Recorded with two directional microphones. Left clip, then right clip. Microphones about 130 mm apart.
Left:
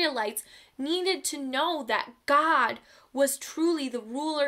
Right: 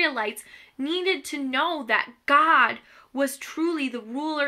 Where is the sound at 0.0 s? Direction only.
45° left (ahead or behind).